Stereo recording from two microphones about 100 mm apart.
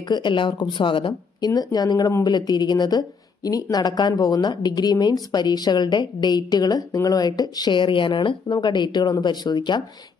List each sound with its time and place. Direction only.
0.1 s speech: 50° left (ahead or behind)
1.4 s speech: 40° left (ahead or behind)